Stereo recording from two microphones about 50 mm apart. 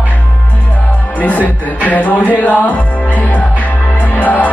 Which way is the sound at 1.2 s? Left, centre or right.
Left.